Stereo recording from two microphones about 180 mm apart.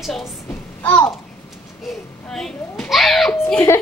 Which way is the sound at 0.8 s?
10° left (ahead or behind).